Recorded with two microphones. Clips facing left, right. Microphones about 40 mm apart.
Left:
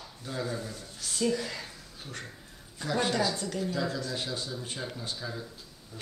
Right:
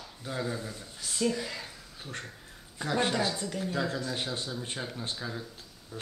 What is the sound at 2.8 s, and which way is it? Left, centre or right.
Speech, right.